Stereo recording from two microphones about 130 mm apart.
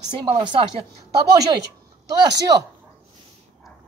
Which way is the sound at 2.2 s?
30° right (ahead or behind).